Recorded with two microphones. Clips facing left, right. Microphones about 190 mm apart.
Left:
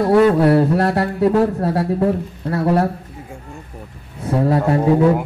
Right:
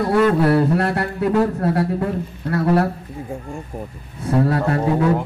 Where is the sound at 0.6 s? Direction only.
30° left (ahead or behind).